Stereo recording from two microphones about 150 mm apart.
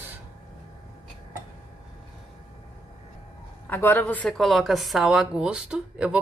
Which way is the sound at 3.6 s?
15° left (ahead or behind).